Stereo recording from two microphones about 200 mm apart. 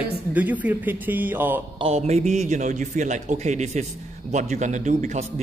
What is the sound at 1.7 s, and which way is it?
A man's voice, 30° right (ahead or behind).